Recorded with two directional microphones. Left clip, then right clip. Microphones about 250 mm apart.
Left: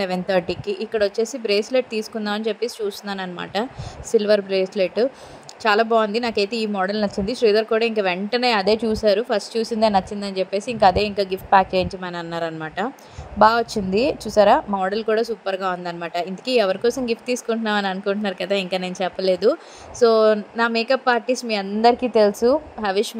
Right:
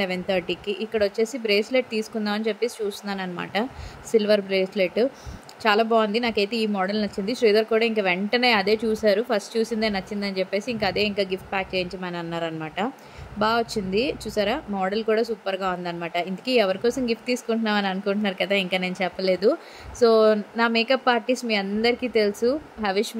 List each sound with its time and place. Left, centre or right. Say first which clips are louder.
0.0 s speech: left 4 dB; centre